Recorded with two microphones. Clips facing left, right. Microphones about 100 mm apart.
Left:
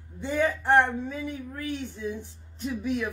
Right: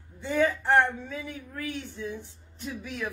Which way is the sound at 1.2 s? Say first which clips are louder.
Left 3 dB; 30° left (ahead or behind).